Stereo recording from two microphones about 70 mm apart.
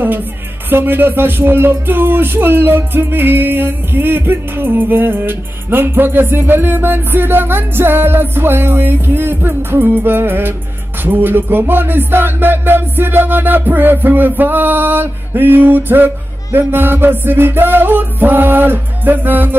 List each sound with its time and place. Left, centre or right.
0.7 s music: right